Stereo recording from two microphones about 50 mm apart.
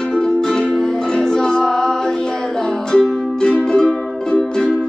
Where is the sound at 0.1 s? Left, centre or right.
Centre.